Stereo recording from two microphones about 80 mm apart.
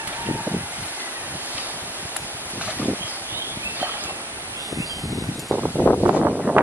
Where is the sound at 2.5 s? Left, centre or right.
Centre.